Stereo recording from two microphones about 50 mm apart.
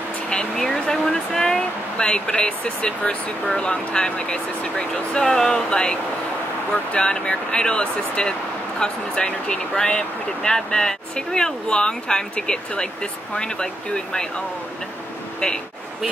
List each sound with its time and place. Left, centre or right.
0.3 s speech: centre
15.4 s speech: centre